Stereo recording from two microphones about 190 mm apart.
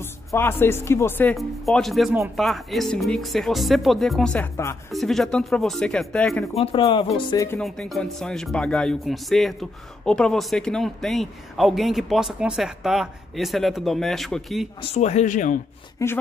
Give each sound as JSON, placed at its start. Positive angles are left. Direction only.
{"t": 0.0, "sound": "speech", "side_deg": 10}
{"t": 4.9, "sound": "speech", "side_deg": 0}
{"t": 6.5, "sound": "speech", "side_deg": 30}
{"t": 7.5, "sound": "speech", "side_deg": 5}
{"t": 14.8, "sound": "speech", "side_deg": 35}
{"t": 16.0, "sound": "speech", "side_deg": 15}